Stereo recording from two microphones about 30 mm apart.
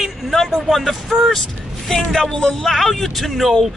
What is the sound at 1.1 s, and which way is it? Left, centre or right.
Speech, centre.